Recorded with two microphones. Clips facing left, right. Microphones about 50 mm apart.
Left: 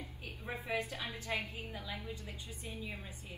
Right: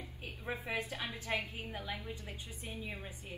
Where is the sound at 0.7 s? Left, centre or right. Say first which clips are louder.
Left 3 dB; right.